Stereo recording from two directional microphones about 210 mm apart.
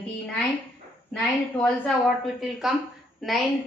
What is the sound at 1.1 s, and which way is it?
Speech, 5° left (ahead or behind).